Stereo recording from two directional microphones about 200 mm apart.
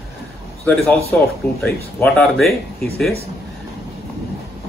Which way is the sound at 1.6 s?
5° left (ahead or behind).